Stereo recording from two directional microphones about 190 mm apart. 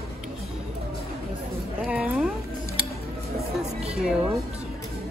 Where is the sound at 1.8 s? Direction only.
5° right (ahead or behind).